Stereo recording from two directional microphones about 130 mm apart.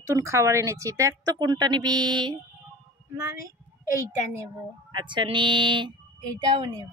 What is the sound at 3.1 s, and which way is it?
Speech, 20° right (ahead or behind).